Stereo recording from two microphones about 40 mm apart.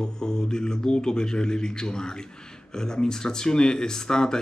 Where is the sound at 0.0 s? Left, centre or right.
Centre.